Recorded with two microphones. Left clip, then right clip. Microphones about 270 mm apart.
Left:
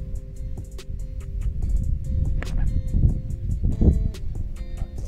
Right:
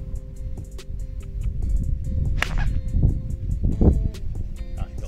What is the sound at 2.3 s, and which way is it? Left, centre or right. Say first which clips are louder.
Music: right 14 dB; right.